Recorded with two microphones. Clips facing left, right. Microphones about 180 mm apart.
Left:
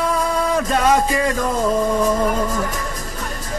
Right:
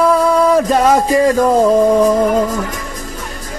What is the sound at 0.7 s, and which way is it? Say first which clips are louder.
Music: right 5 dB; 35° right (ahead or behind).